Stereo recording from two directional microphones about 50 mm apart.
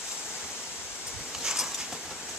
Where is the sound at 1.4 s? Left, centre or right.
Centre.